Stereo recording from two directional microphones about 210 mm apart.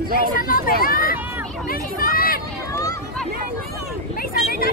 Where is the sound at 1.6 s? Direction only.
40° left (ahead or behind).